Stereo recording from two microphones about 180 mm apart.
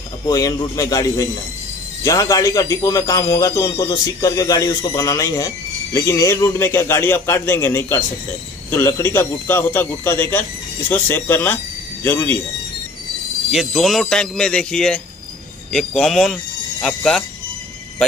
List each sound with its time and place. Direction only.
0.3 s a man's voice: 20° left (ahead or behind)
13.5 s speech: centre (ahead or behind)